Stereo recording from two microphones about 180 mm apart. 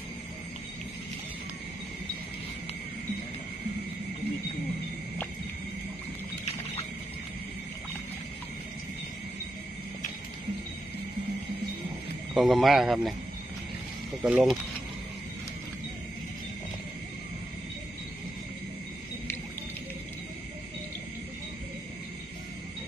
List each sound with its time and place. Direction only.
6.4 s a sound: 35° left (ahead or behind)
12.4 s speech: centre (ahead or behind)
14.2 s speech: 5° right (ahead or behind)